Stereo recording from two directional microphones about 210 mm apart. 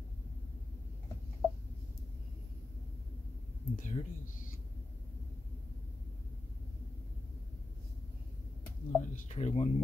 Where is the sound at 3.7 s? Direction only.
35° left (ahead or behind).